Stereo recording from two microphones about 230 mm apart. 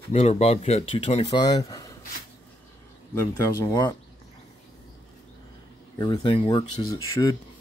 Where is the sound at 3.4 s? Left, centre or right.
Centre.